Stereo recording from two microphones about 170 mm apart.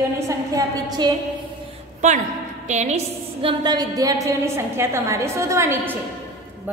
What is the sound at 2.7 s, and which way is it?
Speech, 40° right (ahead or behind).